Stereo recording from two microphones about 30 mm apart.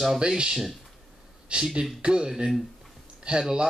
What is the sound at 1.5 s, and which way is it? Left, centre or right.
Speech, right.